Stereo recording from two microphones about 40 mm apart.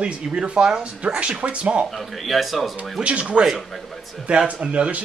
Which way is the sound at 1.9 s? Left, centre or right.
Centre.